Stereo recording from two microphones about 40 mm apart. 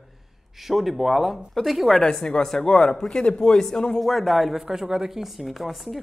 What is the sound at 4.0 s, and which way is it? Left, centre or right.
Speech, centre.